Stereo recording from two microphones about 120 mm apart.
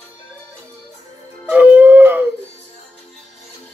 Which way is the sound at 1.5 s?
10° right (ahead or behind).